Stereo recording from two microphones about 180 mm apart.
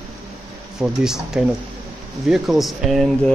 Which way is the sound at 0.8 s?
5° right (ahead or behind).